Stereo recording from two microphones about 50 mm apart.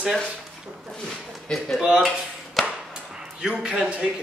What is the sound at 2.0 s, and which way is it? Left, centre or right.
Chop, centre.